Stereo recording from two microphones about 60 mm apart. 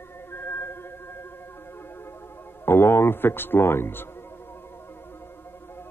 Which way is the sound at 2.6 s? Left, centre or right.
Left.